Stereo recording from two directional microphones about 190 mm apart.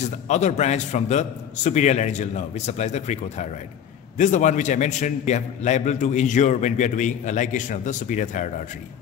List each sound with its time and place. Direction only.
0.3 s a man's voice: 35° left (ahead or behind)